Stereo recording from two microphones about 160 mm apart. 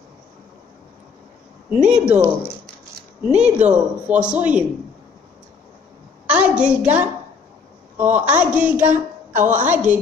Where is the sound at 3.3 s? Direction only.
45° right (ahead or behind).